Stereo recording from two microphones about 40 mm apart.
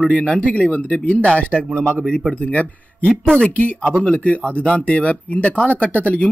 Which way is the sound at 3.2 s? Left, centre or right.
Centre.